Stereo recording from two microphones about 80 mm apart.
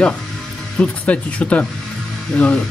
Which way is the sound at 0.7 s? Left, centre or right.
Centre.